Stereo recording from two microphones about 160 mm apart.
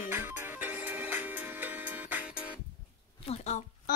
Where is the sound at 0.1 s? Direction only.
15° right (ahead or behind).